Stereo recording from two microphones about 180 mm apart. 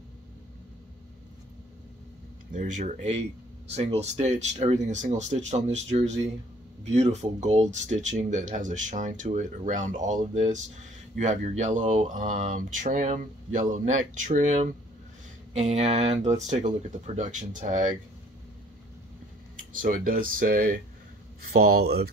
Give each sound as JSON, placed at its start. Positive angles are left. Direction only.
{"t": 2.5, "sound": "speech", "side_deg": -45}
{"t": 19.7, "sound": "speech", "side_deg": -50}